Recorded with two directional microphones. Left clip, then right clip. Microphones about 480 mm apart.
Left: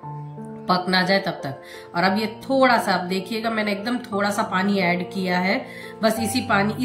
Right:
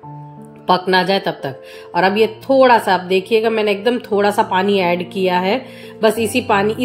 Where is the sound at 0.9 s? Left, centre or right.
Centre.